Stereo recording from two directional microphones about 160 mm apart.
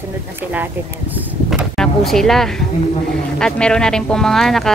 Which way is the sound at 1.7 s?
5° left (ahead or behind).